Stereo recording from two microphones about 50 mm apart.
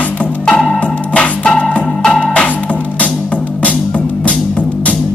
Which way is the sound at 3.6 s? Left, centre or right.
Left.